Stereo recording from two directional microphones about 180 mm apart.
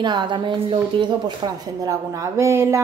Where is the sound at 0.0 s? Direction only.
25° right (ahead or behind).